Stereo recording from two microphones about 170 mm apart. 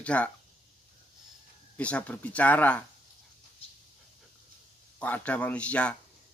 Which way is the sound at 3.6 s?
35° left (ahead or behind).